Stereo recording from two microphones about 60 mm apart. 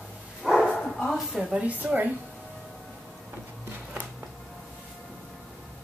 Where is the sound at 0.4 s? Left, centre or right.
Centre.